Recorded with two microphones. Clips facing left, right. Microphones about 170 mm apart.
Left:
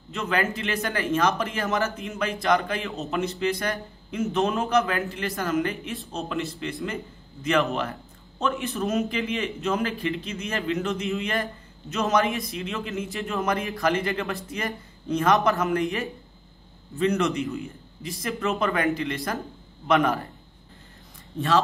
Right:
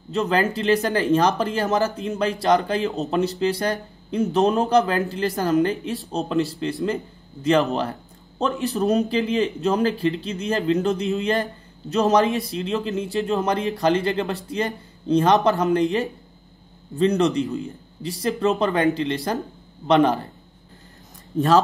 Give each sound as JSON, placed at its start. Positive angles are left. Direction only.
{"t": 0.1, "sound": "speech", "side_deg": -35}